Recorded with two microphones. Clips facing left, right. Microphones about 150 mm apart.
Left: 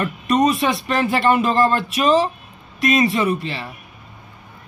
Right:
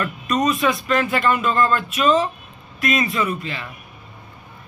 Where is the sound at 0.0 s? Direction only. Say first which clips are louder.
Left 3 dB; 30° left (ahead or behind).